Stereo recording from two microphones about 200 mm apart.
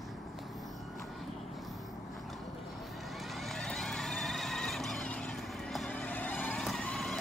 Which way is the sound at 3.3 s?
Centre (ahead or behind).